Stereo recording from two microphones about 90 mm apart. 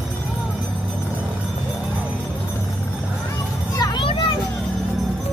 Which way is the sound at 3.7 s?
60° left (ahead or behind).